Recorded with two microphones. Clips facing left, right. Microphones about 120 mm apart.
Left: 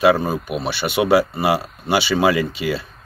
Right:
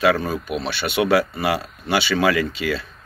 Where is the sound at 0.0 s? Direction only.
20° left (ahead or behind).